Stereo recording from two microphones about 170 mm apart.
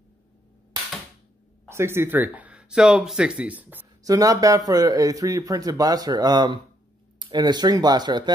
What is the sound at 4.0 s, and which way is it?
Speech, 20° right (ahead or behind).